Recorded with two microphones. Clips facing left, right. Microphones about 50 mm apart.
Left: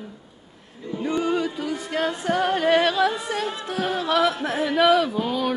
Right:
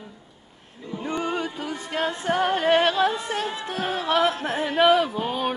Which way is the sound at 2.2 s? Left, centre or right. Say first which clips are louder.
Even; right.